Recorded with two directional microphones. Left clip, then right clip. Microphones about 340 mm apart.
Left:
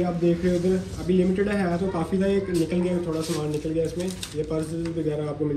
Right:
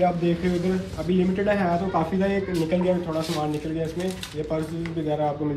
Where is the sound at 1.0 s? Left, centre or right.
Centre.